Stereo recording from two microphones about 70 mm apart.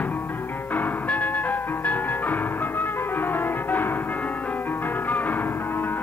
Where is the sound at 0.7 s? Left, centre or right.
Left.